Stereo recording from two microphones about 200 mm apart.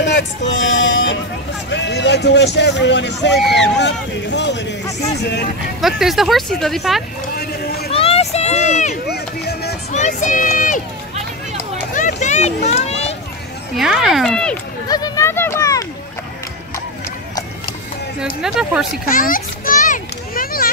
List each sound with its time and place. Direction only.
0.0 s speech: 65° left (ahead or behind)
5.8 s speech: centre (ahead or behind)
7.9 s a sound: 30° left (ahead or behind)
9.1 s music: 55° left (ahead or behind)
9.9 s speech: 40° left (ahead or behind)
11.9 s a sound: 40° left (ahead or behind)
13.7 s speech: centre (ahead or behind)
14.9 s speech: 20° left (ahead or behind)
18.2 s speech: centre (ahead or behind)
19.0 s children playing: 45° left (ahead or behind)